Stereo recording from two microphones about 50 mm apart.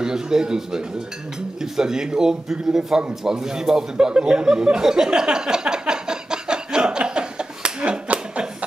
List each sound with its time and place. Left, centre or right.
0.0 s a man's voice: centre
3.3 s chuckle: centre